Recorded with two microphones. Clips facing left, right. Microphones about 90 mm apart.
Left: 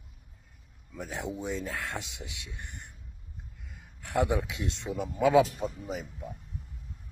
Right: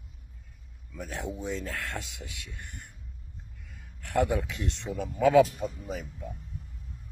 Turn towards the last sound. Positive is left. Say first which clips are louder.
# even
turn(degrees=15)  # may be behind; listen again after turning